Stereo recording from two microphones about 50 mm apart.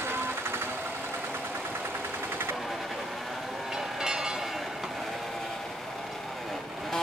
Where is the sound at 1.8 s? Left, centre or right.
Right.